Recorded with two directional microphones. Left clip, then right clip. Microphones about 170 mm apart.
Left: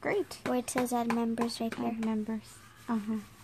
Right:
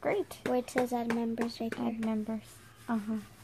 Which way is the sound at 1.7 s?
5° right (ahead or behind).